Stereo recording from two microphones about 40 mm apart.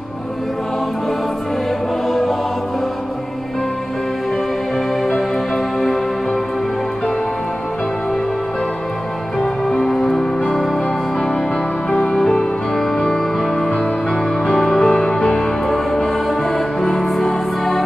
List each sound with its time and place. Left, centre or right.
2.0 s music: centre
9.7 s music: centre
12.2 s music: centre
15.7 s music: centre